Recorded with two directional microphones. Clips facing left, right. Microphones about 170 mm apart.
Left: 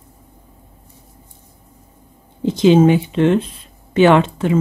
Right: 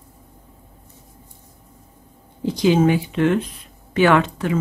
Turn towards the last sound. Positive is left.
turn(degrees=25)  # may be behind; listen again after turning